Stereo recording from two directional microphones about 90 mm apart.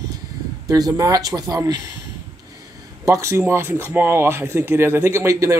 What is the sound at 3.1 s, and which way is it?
Speech, 35° right (ahead or behind).